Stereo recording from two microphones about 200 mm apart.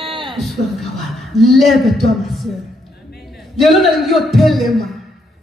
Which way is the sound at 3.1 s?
Centre (ahead or behind).